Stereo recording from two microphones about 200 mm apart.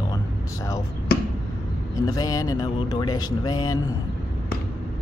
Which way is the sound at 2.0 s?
15° left (ahead or behind).